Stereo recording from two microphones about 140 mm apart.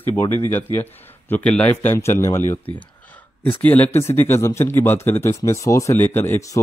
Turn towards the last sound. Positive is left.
turn(degrees=15)  # may be behind; listen again after turning